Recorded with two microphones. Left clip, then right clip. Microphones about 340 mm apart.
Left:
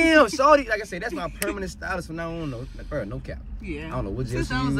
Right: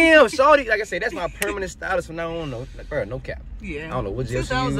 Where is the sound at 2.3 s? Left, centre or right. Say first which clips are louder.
Right 4 dB; right.